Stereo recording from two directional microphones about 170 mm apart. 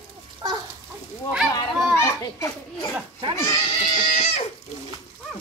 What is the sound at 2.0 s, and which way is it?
Speech, 15° left (ahead or behind).